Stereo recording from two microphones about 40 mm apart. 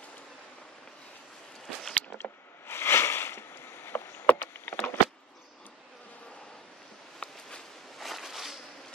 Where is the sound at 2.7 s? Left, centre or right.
Left.